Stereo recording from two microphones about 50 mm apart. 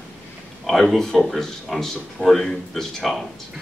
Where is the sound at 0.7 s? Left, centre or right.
Centre.